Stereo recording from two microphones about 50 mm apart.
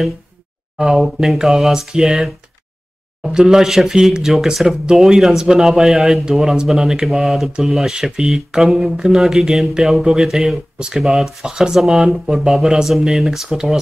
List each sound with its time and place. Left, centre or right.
0.7 s speech: centre
11.4 s speech: centre